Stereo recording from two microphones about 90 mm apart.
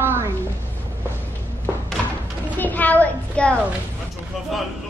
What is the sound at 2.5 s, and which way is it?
A child's voice, 20° left (ahead or behind).